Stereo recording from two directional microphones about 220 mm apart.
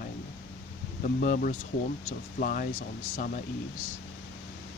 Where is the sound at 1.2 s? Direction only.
35° left (ahead or behind).